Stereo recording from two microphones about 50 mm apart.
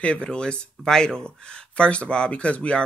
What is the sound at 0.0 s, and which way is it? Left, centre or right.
Speech, left.